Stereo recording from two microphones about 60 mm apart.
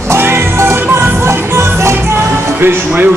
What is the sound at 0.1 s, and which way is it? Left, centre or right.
Music, right.